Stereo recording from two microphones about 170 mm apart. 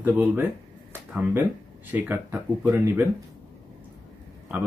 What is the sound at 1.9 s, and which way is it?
Speech, 10° right (ahead or behind).